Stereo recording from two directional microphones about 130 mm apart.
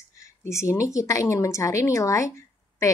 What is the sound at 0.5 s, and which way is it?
A woman's voice, 25° left (ahead or behind).